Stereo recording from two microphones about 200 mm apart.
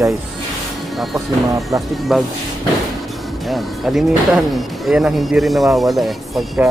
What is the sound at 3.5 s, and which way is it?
Speech, centre (ahead or behind).